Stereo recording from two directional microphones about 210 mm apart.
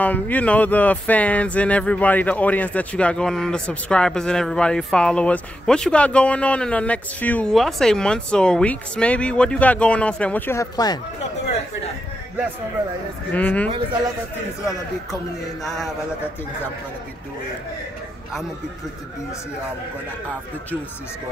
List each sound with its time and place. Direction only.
0.0 s speech: 10° left (ahead or behind)
13.3 s speech: 5° left (ahead or behind)
15.6 s speech: centre (ahead or behind)